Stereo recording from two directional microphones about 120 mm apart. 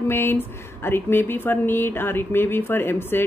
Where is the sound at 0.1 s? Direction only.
20° left (ahead or behind).